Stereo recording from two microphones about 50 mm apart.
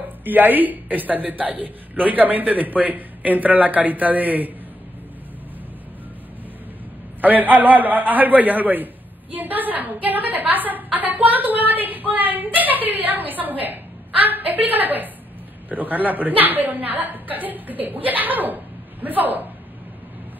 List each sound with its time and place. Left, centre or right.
0.2 s a man's voice: right
7.2 s a man's voice: right